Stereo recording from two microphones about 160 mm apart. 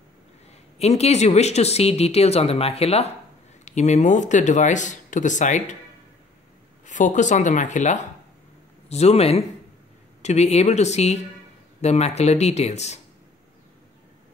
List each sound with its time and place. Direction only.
0.7 s speech: 40° left (ahead or behind)
6.9 s speech: 50° left (ahead or behind)